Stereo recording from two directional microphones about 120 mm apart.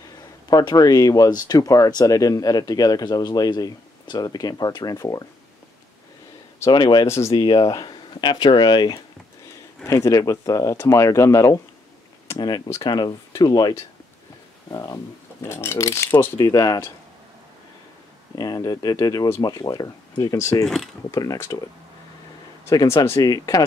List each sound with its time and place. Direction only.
0.5 s speech: 35° left (ahead or behind)
6.7 s speech: 40° left (ahead or behind)
7.1 s speech: 25° left (ahead or behind)
7.3 s speech: 40° left (ahead or behind)
9.8 s speech: 25° left (ahead or behind)
12.6 s speech: 25° left (ahead or behind)
13.4 s speech: 35° left (ahead or behind)
15.4 s speech: 20° left (ahead or behind)
18.3 s speech: 35° left (ahead or behind)
20.6 s speech: centre (ahead or behind)
21.1 s speech: 25° left (ahead or behind)
22.7 s speech: 30° left (ahead or behind)